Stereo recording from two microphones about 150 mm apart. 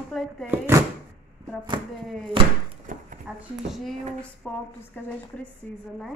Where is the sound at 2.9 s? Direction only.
60° right (ahead or behind).